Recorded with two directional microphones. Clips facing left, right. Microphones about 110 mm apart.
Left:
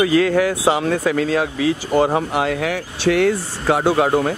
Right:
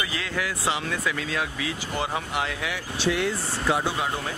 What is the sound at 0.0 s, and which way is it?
Speech, 55° left (ahead or behind).